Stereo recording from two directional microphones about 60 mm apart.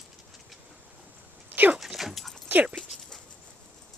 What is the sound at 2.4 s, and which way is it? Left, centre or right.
Dog, right.